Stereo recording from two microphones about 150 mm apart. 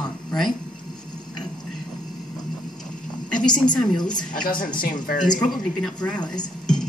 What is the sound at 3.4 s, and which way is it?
Speech, 30° left (ahead or behind).